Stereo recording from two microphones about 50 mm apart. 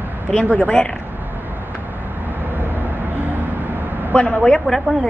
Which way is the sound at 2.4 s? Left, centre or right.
Right.